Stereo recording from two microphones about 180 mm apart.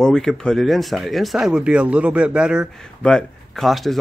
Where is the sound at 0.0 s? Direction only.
5° left (ahead or behind).